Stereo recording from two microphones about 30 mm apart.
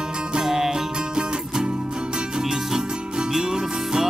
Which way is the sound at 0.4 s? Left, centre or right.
Centre.